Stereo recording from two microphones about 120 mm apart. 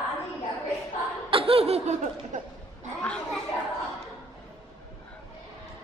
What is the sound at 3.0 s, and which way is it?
Speech, 10° left (ahead or behind).